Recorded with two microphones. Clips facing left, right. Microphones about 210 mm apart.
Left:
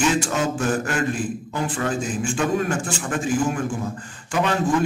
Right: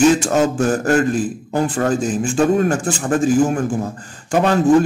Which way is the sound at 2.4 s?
40° right (ahead or behind).